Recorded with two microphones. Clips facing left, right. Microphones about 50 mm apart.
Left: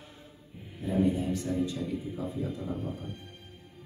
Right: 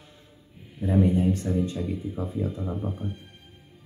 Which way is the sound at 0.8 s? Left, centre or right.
Right.